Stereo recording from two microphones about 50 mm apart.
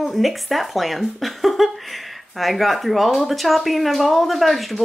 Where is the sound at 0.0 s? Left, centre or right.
Centre.